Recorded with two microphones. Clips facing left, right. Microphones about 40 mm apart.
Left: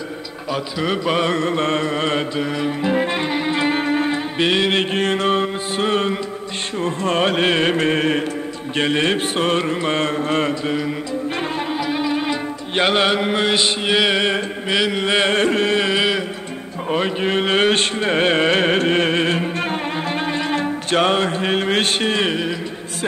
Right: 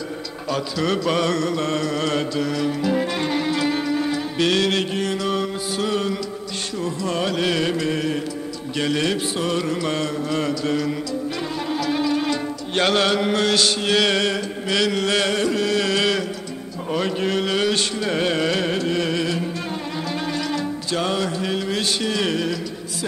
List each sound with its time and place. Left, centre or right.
0.5 s mantra: centre
4.9 s music: left
6.8 s carnatic music: left
10.6 s carnatic music: left
11.7 s music: centre
15.3 s carnatic music: left
20.1 s music: left